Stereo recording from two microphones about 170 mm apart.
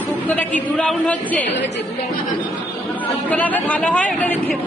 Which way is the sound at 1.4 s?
90° left.